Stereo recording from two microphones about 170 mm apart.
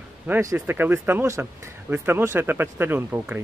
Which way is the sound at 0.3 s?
20° right (ahead or behind).